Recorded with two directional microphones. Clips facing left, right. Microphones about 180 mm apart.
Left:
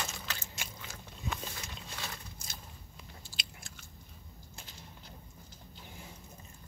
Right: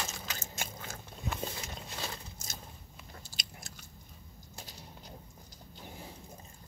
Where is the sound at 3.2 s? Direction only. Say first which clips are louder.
Right 1 dB; 40° right (ahead or behind).